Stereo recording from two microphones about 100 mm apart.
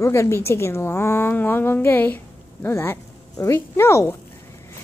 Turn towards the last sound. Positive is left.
turn(degrees=25)  # may be behind; listen again after turning